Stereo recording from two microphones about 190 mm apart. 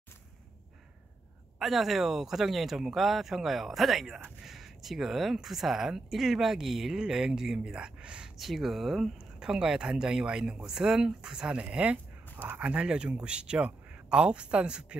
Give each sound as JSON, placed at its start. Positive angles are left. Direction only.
{"t": 1.6, "sound": "speech", "side_deg": 0}